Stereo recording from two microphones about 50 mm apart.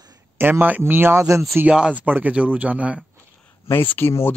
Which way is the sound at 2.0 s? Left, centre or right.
Right.